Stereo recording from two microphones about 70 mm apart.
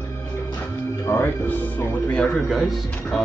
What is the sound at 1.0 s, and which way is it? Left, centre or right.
Music, left.